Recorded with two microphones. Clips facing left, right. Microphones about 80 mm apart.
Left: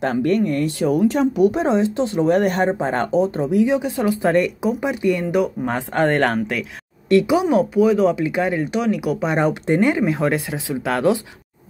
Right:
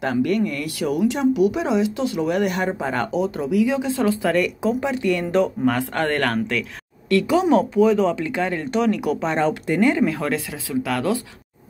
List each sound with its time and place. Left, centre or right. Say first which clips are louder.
0.0 s speech: left 2 dB; left
3.7 s speech: left 1 dB; left
7.4 s speech: even; centre; by 11.1 s left